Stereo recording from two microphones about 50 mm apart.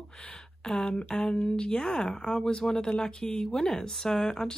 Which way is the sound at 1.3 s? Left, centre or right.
Left.